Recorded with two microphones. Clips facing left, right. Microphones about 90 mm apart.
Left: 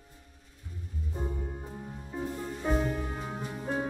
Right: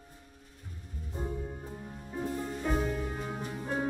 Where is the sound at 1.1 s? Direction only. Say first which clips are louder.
Even; 5° left (ahead or behind).